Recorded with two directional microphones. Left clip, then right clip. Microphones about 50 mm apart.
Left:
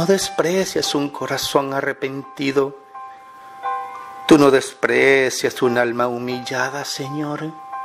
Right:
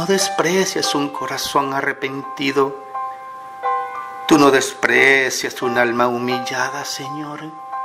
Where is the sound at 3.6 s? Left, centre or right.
Right.